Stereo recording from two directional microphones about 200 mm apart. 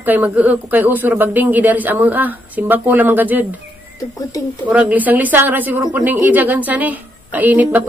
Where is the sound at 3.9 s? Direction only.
15° left (ahead or behind).